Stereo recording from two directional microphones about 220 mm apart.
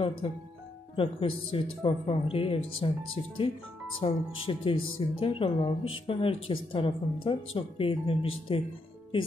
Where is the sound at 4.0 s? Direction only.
25° left (ahead or behind).